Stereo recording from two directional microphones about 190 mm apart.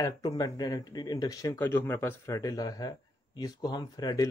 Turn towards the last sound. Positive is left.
turn(degrees=20)  # may be behind; listen again after turning